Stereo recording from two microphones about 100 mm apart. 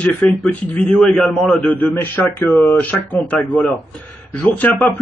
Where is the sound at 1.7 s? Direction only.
20° left (ahead or behind).